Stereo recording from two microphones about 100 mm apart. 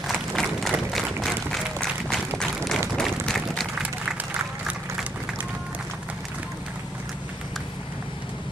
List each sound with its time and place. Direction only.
0.0 s applause: centre (ahead or behind)
3.0 s a sound: 5° left (ahead or behind)
3.8 s applause: 15° right (ahead or behind)